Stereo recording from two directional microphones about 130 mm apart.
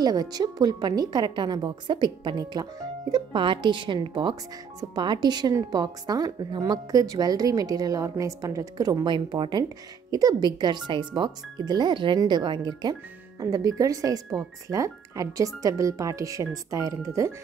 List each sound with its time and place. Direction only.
0.0 s a woman's voice: 30° right (ahead or behind)